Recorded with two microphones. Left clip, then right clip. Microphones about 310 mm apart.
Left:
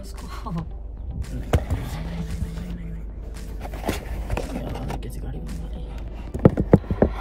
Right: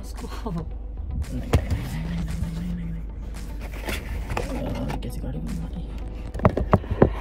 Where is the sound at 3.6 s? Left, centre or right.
Centre.